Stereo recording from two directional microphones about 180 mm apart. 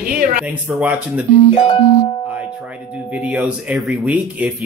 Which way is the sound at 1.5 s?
35° left (ahead or behind).